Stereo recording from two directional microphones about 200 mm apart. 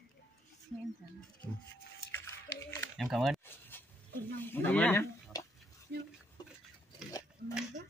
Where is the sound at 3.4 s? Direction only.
10° left (ahead or behind).